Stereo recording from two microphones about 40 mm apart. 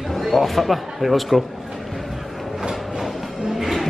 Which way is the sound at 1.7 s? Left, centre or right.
Centre.